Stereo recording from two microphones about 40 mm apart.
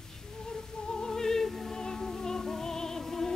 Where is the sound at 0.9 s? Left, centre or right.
Centre.